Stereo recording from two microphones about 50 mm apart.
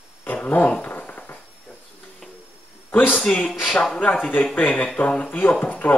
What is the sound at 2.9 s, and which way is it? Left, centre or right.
Speech, left.